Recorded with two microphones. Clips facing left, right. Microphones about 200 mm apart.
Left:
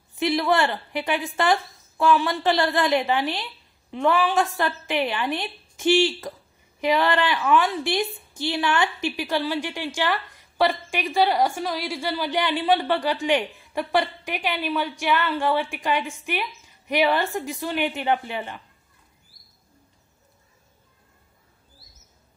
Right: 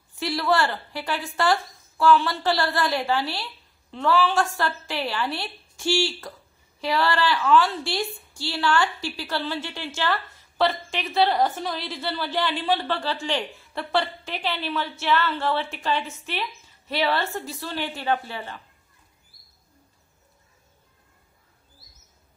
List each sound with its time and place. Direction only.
0.1 s a woman's voice: 20° left (ahead or behind)